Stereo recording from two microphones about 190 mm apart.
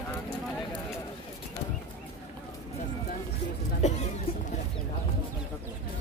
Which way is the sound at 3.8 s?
35° left (ahead or behind).